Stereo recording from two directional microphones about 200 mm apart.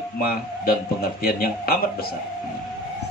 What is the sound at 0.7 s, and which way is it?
Speech, 50° left (ahead or behind).